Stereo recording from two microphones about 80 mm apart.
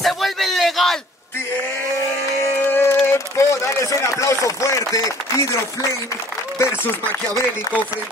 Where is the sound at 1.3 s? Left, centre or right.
Left.